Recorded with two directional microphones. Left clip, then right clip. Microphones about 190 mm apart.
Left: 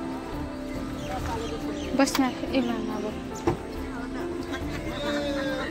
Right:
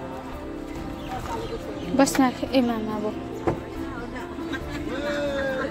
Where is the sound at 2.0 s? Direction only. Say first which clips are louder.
Right 4 dB; 20° right (ahead or behind).